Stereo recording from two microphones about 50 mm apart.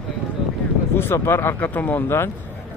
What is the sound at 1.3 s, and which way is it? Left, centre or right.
Speech, left.